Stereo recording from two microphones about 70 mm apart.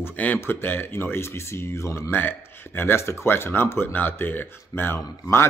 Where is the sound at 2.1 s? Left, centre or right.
Left.